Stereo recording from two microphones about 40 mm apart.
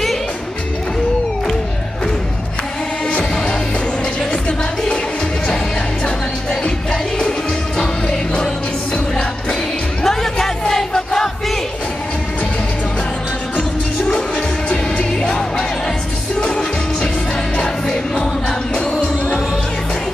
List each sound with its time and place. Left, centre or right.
6.9 s music: left
10.0 s music: centre
14.7 s music: left